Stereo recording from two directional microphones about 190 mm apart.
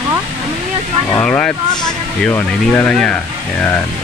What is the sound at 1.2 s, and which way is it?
Speech, 5° left (ahead or behind).